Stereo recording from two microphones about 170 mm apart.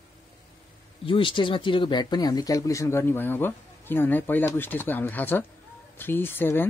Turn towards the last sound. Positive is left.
turn(degrees=10)  # may be behind; listen again after turning